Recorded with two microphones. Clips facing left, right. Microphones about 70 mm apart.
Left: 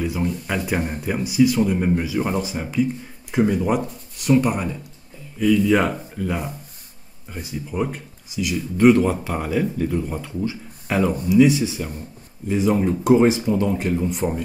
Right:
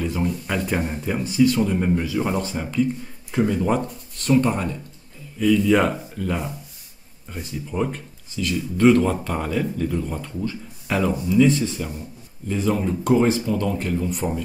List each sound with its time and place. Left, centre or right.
0.0 s speech: centre; by 14.2 s left